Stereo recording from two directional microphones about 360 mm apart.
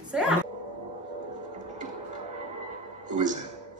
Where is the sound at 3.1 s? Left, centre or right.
Right.